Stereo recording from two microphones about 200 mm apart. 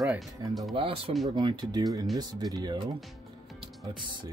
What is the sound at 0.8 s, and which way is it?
Speech, 25° right (ahead or behind).